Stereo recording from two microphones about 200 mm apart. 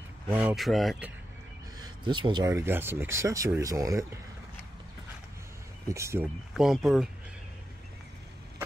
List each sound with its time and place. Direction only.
0.3 s speech: 5° right (ahead or behind)
1.8 s speech: 20° right (ahead or behind)
5.9 s speech: 15° right (ahead or behind)
6.5 s speech: centre (ahead or behind)